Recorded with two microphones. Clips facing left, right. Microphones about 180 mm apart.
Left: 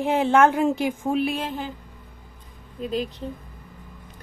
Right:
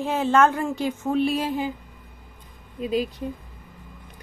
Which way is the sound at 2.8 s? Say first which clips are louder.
Right 2 dB; 10° right (ahead or behind).